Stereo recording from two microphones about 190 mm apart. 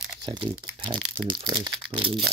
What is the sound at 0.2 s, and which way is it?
Speech, 25° right (ahead or behind).